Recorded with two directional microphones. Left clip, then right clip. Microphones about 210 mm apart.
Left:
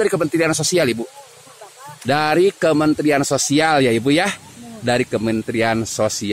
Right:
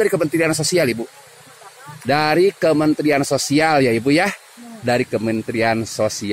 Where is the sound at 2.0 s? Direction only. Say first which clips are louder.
Even; 5° left (ahead or behind).